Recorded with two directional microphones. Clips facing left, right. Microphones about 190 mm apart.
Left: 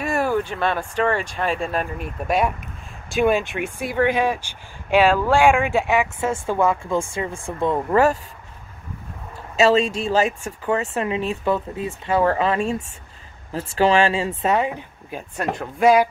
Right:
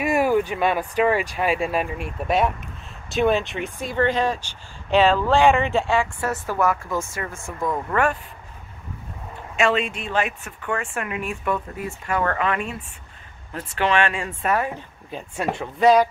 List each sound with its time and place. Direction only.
0.0 s speech: 15° right (ahead or behind); by 8.1 s 25° left (ahead or behind)
9.6 s speech: 35° left (ahead or behind)
10.4 s speech: 25° left (ahead or behind)
15.3 s speech: 5° right (ahead or behind)